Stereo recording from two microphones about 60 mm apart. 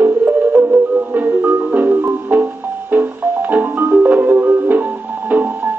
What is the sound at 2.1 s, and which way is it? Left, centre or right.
Music, right.